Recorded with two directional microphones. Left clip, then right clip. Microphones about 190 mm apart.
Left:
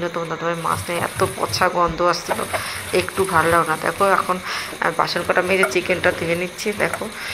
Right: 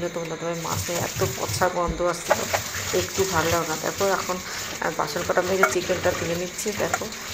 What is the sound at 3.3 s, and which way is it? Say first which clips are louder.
Speech: left 10 dB; 20° left (ahead or behind).